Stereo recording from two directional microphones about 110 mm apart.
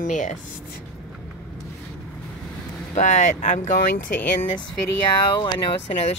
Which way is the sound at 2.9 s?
90° left.